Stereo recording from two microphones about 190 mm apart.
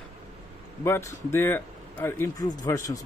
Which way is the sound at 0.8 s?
15° left (ahead or behind).